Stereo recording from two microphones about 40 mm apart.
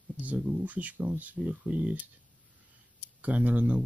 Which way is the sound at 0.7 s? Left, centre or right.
Right.